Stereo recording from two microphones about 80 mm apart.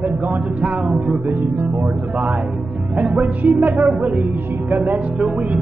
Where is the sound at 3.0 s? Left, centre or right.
Centre.